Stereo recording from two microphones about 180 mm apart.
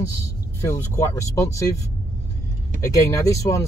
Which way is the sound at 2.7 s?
15° left (ahead or behind).